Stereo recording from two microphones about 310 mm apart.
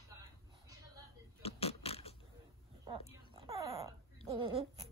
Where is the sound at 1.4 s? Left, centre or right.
Centre.